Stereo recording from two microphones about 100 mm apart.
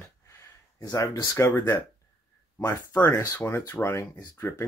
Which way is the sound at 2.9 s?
25° left (ahead or behind).